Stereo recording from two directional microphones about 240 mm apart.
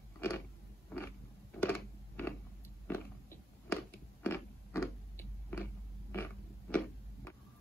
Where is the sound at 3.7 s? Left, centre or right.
Centre.